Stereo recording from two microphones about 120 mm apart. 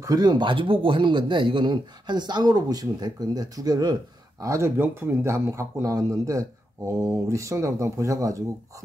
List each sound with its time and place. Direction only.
0.0 s speech: 35° right (ahead or behind)